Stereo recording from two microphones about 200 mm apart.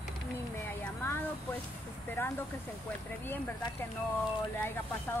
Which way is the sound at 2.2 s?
10° left (ahead or behind).